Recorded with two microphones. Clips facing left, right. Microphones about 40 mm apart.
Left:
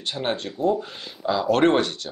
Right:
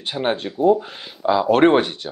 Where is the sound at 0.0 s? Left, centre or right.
Centre.